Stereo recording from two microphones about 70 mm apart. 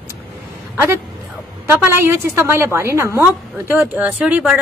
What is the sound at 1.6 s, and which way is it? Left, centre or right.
Speech, right.